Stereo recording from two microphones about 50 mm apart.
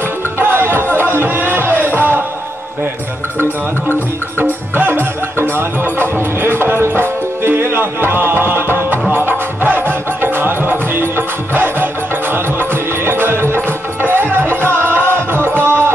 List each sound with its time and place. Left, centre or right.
0.4 s music: right
4.4 s music: right